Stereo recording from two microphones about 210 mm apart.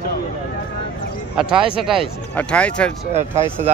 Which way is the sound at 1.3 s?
Centre (ahead or behind).